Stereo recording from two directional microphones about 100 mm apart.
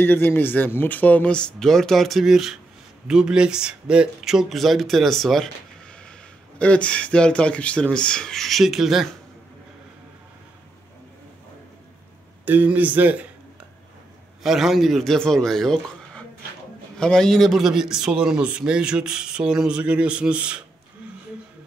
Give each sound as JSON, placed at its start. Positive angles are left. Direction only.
{"t": 0.0, "sound": "speech", "side_deg": 20}
{"t": 6.6, "sound": "speech", "side_deg": 10}
{"t": 12.4, "sound": "a man's voice", "side_deg": -15}
{"t": 14.4, "sound": "a man's voice", "side_deg": 0}